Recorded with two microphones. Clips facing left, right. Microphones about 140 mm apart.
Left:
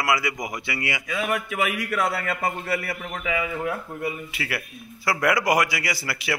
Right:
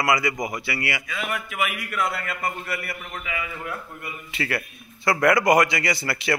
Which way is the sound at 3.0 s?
90° left.